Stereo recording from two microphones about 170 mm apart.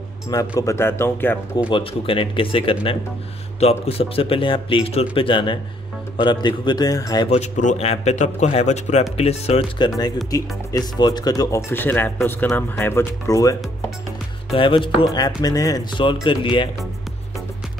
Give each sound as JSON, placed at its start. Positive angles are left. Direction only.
{"t": 0.3, "sound": "speech", "side_deg": 20}
{"t": 1.7, "sound": "a man's voice", "side_deg": 30}
{"t": 7.2, "sound": "a man's voice", "side_deg": 45}
{"t": 9.8, "sound": "speech", "side_deg": 25}
{"t": 14.5, "sound": "a man's voice", "side_deg": 30}